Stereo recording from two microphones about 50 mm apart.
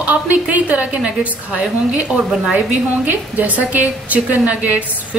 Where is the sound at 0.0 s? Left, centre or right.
Right.